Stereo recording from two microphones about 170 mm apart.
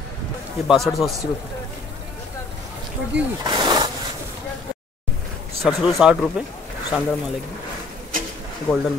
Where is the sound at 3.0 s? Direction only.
90° right.